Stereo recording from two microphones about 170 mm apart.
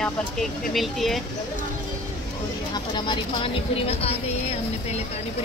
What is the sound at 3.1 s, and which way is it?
Speech, 30° left (ahead or behind).